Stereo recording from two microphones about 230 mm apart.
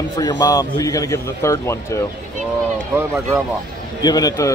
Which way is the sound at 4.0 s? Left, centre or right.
Centre.